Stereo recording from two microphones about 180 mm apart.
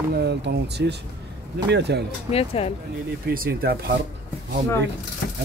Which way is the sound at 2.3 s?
35° left (ahead or behind).